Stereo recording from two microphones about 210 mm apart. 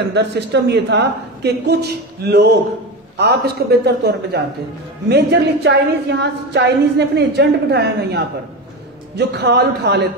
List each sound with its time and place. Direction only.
0.1 s a woman's voice: 55° right (ahead or behind)